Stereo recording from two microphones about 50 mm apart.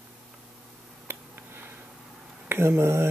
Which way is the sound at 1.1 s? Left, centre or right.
Right.